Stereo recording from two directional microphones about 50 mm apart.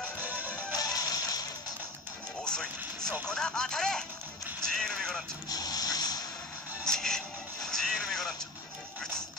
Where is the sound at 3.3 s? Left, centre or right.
Centre.